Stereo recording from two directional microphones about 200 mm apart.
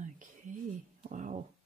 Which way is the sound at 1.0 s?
40° right (ahead or behind).